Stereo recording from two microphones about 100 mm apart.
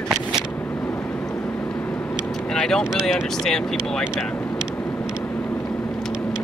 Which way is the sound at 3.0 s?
10° right (ahead or behind).